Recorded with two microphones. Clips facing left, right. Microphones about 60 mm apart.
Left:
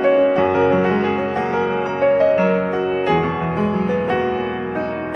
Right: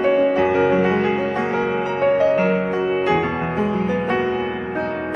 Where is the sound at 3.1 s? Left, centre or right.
Right.